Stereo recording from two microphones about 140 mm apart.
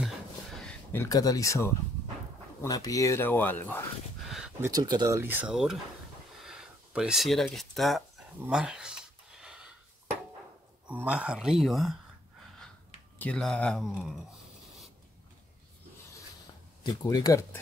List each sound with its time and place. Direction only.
0.9 s speech: 25° left (ahead or behind)
4.2 s a sound: centre (ahead or behind)
4.6 s speech: 25° right (ahead or behind)
5.2 s speech: 10° right (ahead or behind)
6.4 s a sound: 5° right (ahead or behind)
10.9 s speech: 10° right (ahead or behind)
13.2 s speech: 5° left (ahead or behind)
16.8 s speech: 25° left (ahead or behind)